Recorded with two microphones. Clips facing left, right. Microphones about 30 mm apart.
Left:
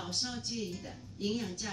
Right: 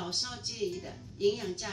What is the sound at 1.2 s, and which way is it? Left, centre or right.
Speech, right.